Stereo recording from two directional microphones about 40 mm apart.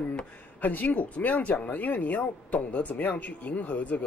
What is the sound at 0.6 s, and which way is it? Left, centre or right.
Speech, left.